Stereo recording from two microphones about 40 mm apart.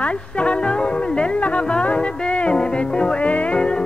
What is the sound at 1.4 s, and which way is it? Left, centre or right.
Music, left.